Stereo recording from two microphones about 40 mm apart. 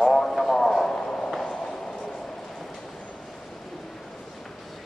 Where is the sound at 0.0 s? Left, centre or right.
Centre.